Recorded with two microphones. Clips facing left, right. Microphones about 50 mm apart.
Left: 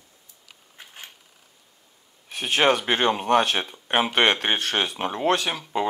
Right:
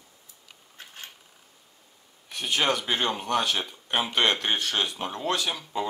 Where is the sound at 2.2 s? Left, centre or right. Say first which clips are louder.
Left 5 dB; left.